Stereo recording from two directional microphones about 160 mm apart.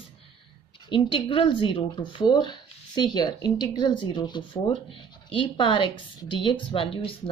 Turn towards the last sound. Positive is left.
turn(degrees=35)  # may be behind; listen again after turning